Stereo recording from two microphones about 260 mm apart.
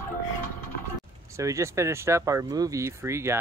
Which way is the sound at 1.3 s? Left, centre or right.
Centre.